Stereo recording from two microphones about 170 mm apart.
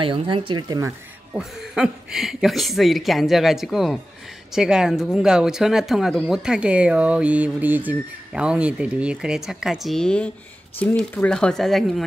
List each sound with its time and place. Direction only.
0.0 s speech: 30° right (ahead or behind)
1.3 s speech: 5° right (ahead or behind)